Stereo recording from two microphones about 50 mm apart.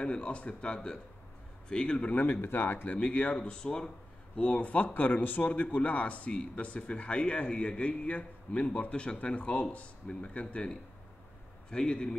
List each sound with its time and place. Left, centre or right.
0.0 s a man's voice: left
2.4 s speech: left
2.9 s a man's voice: left